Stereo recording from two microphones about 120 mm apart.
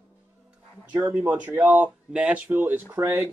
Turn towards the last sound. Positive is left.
turn(degrees=-20)  # may be behind; listen again after turning